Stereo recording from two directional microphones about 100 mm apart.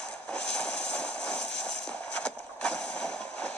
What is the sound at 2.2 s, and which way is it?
Vehicle, 10° left (ahead or behind).